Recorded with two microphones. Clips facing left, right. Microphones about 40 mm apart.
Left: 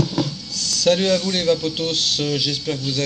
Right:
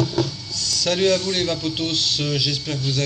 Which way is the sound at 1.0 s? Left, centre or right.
Centre.